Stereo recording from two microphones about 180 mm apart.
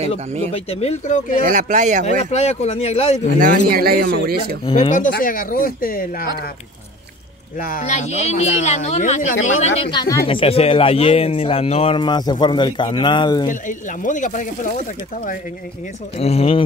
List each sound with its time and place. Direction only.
0.5 s speech: 35° left (ahead or behind)
1.4 s speech: 45° right (ahead or behind)
2.0 s speech: 35° left (ahead or behind)
3.7 s speech: 55° right (ahead or behind)
4.7 s speech: 45° left (ahead or behind)
7.6 s speech: 45° left (ahead or behind)
9.8 s speech: 25° left (ahead or behind)
13.5 s speech: 45° left (ahead or behind)
16.2 s speech: 35° left (ahead or behind)